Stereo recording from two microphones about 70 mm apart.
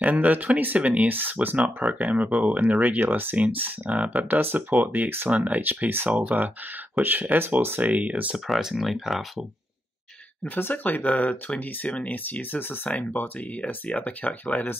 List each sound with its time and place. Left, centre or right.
0.0 s speech: right
7.8 s speech: centre
8.5 s speech: centre
10.4 s speech: left